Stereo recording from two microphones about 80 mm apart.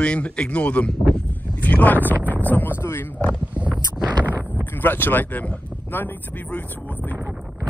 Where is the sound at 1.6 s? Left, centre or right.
Left.